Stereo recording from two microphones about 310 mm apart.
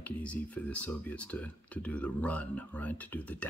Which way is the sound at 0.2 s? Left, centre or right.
Centre.